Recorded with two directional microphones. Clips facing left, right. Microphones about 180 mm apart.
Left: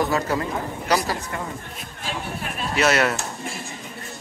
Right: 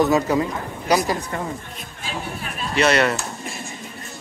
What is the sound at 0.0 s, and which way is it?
Speech, 20° right (ahead or behind).